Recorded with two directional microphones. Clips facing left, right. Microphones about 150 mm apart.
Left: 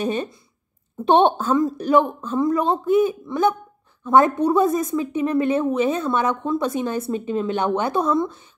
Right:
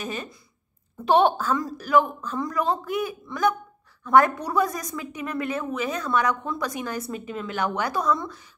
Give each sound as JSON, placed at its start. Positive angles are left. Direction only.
{"t": 0.0, "sound": "a woman's voice", "side_deg": 30}